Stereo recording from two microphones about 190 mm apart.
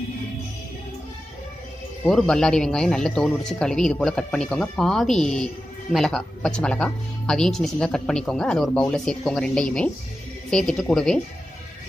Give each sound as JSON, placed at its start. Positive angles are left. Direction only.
{"t": 2.0, "sound": "speech", "side_deg": 5}